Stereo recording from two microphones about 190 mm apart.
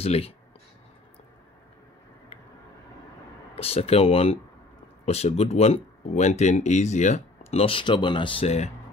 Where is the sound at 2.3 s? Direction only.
30° left (ahead or behind).